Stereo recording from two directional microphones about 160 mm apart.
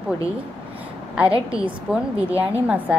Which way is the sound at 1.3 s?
35° right (ahead or behind).